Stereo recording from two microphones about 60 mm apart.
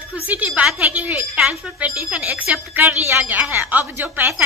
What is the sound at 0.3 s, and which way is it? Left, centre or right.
Speech, right.